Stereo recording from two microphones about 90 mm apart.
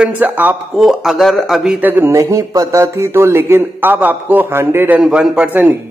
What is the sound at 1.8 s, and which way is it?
Speech, 20° right (ahead or behind).